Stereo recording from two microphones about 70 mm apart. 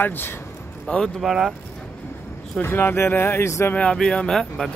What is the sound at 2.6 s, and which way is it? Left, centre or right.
Speech, left.